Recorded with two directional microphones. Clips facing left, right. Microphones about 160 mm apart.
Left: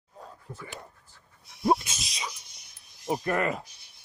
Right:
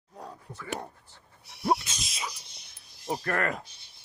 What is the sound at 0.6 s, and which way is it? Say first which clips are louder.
Speech: right 8 dB; 70° right (ahead or behind).